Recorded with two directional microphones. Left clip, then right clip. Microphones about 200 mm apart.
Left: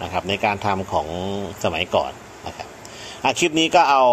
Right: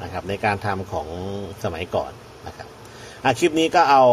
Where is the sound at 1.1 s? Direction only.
25° left (ahead or behind).